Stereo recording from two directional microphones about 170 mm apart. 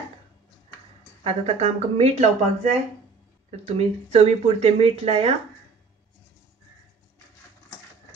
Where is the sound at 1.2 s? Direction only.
35° right (ahead or behind).